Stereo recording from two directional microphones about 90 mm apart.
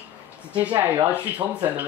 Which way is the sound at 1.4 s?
65° right (ahead or behind).